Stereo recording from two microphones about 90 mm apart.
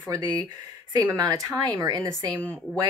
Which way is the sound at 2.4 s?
15° left (ahead or behind).